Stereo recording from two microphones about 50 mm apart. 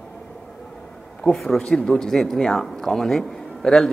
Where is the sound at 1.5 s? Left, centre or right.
Centre.